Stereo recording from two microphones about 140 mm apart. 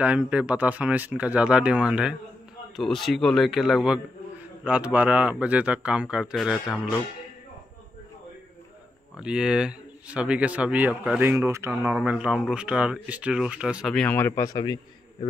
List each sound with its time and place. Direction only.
0.0 s a man's voice: 10° right (ahead or behind)
9.1 s speech: 5° right (ahead or behind)
13.9 s a man's voice: 10° left (ahead or behind); by 15.2 s 30° left (ahead or behind)